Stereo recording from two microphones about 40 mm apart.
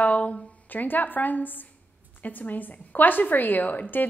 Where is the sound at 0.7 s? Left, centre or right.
Left.